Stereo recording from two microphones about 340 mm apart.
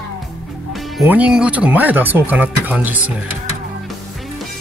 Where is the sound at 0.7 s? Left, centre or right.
Centre.